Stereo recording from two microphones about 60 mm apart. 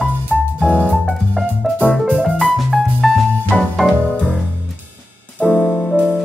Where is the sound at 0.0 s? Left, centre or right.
Centre.